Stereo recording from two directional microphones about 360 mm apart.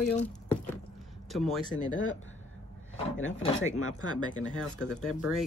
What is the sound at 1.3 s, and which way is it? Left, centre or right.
Speech, centre.